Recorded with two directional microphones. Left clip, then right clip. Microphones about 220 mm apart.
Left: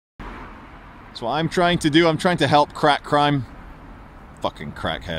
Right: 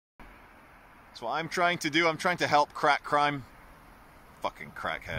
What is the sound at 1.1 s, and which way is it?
Speech, 5° left (ahead or behind).